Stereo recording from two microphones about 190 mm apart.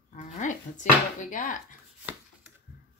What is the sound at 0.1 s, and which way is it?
Speech, 40° left (ahead or behind).